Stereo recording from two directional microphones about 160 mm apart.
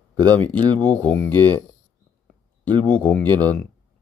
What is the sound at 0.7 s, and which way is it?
Speech, 10° left (ahead or behind).